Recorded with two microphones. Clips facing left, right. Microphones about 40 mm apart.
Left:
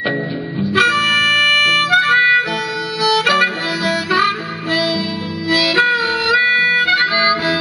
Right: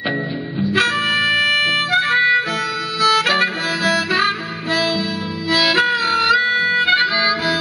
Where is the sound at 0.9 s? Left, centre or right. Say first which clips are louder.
Left 3 dB; left.